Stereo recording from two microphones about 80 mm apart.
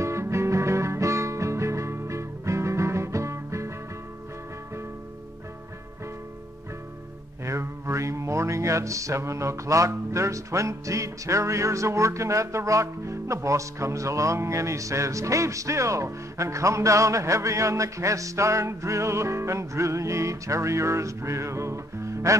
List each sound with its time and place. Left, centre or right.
0.0 s music: right
7.4 s music: right